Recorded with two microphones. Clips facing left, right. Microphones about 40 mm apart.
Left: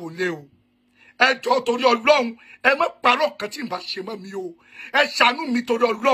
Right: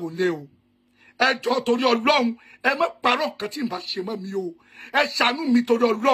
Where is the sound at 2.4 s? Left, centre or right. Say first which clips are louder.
Left 3 dB; left.